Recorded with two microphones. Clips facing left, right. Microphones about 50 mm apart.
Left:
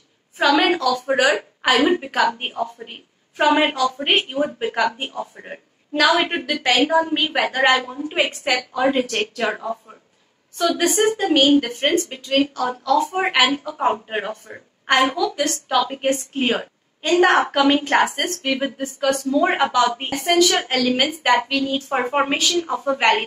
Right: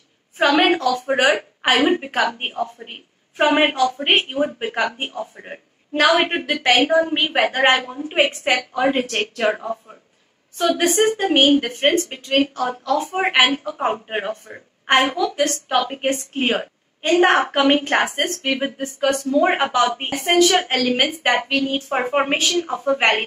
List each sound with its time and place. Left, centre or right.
0.6 s a sound: right
1.6 s a woman's voice: right
9.4 s a woman's voice: centre
10.9 s a woman's voice: right
22.4 s a woman's voice: right